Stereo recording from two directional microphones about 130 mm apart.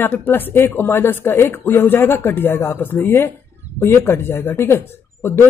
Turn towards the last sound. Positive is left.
turn(degrees=20)  # may be behind; listen again after turning